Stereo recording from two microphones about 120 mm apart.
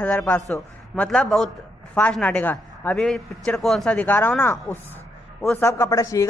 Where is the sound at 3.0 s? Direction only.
5° left (ahead or behind).